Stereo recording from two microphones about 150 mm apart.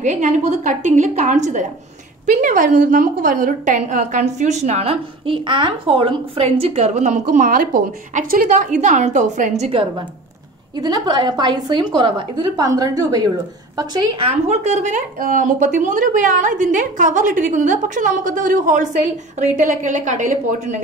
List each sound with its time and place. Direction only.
0.0 s a woman's voice: 55° right (ahead or behind)
9.7 s a woman's voice: 35° right (ahead or behind)
14.2 s a woman's voice: 50° right (ahead or behind)